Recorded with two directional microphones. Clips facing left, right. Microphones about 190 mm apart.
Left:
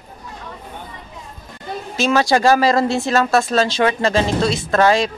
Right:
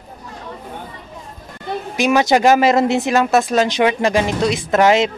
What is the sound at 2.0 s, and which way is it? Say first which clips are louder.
Speech: right 2 dB; 15° right (ahead or behind).